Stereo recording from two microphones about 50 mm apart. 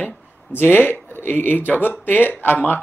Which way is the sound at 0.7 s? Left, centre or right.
Left.